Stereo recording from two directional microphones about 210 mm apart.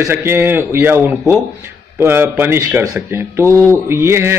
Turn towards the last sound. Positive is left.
turn(degrees=-10)  # may be behind; listen again after turning